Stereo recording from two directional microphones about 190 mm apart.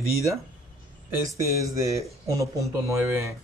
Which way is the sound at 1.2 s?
15° right (ahead or behind).